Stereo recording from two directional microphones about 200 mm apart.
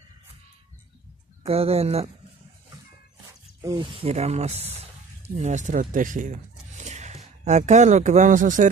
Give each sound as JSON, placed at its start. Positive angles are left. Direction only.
{"t": 1.4, "sound": "speech", "side_deg": -30}
{"t": 3.6, "sound": "speech", "side_deg": -25}